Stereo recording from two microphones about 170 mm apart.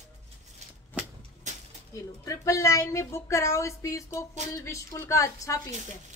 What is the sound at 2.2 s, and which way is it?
A woman's voice, 20° left (ahead or behind).